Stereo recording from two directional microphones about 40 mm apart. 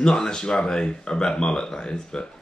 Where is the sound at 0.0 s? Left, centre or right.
Centre.